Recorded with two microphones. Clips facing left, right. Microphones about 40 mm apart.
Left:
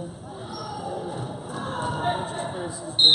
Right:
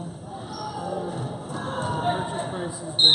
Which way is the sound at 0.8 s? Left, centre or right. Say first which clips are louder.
Right 2 dB; centre.